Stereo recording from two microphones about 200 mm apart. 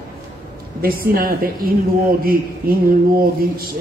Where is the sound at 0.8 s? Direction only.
45° right (ahead or behind).